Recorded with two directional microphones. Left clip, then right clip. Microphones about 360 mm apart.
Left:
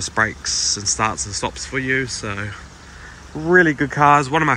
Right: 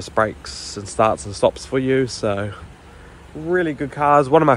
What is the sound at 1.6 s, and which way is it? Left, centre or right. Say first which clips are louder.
Speech: right 2 dB; centre.